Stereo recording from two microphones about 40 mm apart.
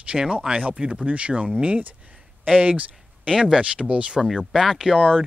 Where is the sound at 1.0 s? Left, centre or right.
Right.